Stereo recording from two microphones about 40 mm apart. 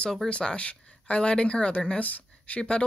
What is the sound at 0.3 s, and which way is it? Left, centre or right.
Speech, left.